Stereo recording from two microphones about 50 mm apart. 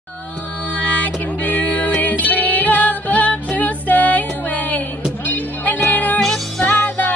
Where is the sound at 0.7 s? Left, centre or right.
Left.